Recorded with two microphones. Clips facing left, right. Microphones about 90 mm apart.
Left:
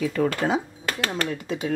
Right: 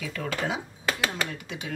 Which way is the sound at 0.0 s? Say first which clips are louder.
Left 11 dB; 40° left (ahead or behind).